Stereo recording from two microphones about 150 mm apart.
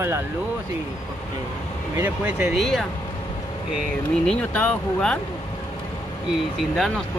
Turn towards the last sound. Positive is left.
turn(degrees=0)  # may be behind; listen again after turning